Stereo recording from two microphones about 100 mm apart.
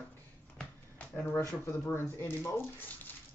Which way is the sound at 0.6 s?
15° left (ahead or behind).